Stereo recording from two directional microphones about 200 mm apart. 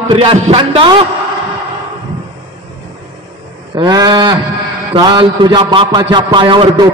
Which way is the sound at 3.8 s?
20° right (ahead or behind).